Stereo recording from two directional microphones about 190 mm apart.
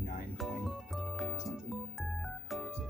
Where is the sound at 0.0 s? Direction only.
50° left (ahead or behind).